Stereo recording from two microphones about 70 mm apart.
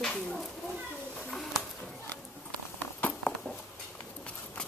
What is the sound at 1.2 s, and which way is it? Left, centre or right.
Bird, centre.